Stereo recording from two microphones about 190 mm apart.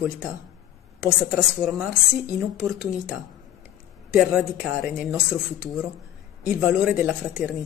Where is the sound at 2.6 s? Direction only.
5° right (ahead or behind).